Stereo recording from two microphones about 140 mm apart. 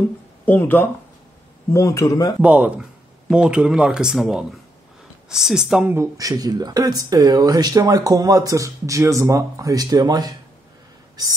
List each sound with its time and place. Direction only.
0.5 s speech: 15° left (ahead or behind)
2.4 s speech: 10° right (ahead or behind)
5.9 s speech: 25° right (ahead or behind)